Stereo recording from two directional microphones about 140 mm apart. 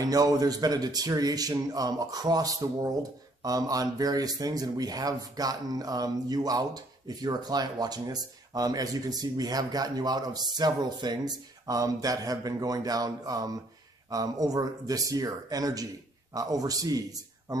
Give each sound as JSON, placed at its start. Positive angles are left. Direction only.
{"t": 0.0, "sound": "a man's voice", "side_deg": -25}